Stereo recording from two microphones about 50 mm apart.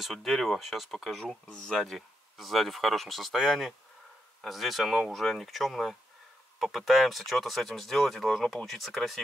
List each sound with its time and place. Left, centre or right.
0.0 s speech: centre
1.5 s speech: centre
1.8 s speech: centre